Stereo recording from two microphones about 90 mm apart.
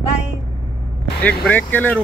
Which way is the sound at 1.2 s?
15° left (ahead or behind).